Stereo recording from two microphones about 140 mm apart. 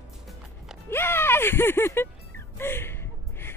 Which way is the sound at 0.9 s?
15° left (ahead or behind).